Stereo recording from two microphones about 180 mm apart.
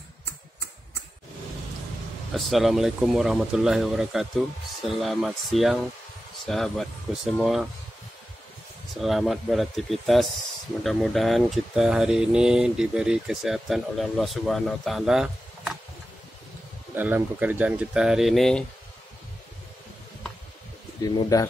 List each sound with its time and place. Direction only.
2.3 s speech: centre (ahead or behind)
8.9 s speech: centre (ahead or behind)
16.9 s speech: 10° right (ahead or behind)
21.0 s speech: 20° left (ahead or behind)